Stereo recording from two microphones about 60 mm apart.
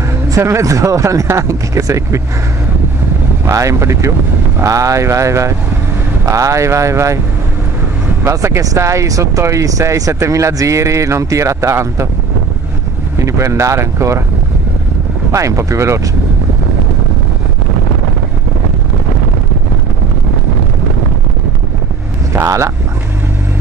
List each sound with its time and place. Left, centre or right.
0.4 s speech: right
3.4 s speech: right
4.6 s speech: right
8.3 s speech: right
13.2 s speech: right
15.3 s speech: right
22.3 s speech: right